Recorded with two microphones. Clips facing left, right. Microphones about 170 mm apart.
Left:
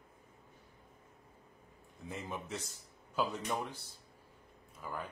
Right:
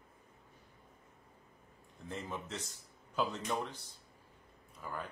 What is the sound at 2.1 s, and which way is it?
Speech, 10° left (ahead or behind).